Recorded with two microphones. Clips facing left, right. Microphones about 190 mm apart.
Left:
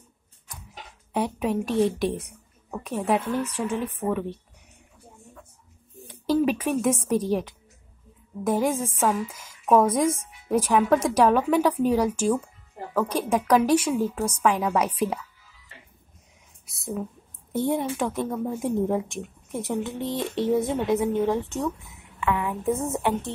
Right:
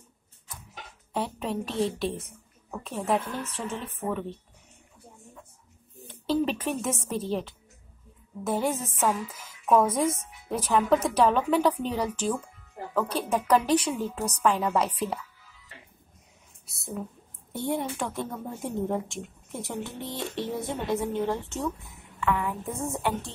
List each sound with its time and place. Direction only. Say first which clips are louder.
1.1 s a woman's voice: left 5 dB; 15° left (ahead or behind)
6.0 s a woman's voice: left 4 dB; 15° left (ahead or behind)
17.5 s a woman's voice: left 5 dB; 20° left (ahead or behind)
22.2 s a sound: left 1 dB; 20° left (ahead or behind)
22.8 s speech: left 4 dB; 20° left (ahead or behind)